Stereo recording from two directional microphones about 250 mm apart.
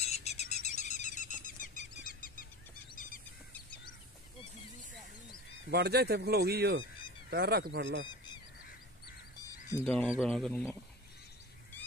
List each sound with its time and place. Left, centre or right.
0.0 s bird: left
5.7 s speech: right
9.8 s speech: centre